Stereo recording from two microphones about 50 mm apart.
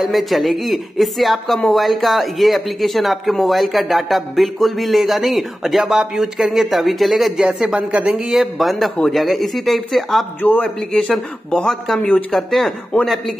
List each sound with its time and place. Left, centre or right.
0.0 s speech: centre
7.4 s a man's voice: right
8.5 s speech: centre
10.6 s speech: centre
12.9 s a man's voice: left